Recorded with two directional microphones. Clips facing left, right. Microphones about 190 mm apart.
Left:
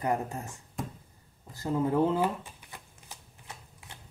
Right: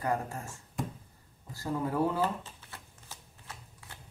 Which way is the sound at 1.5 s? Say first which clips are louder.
Left 5 dB; 20° left (ahead or behind).